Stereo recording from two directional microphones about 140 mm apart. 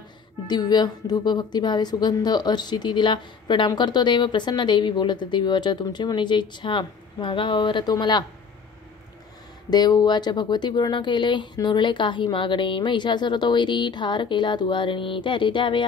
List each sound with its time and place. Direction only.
0.5 s a woman's voice: 30° left (ahead or behind)
9.7 s a woman's voice: 30° left (ahead or behind)